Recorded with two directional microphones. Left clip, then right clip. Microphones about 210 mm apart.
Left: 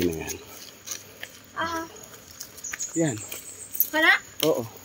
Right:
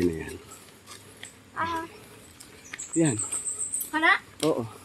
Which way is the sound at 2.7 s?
40° left (ahead or behind).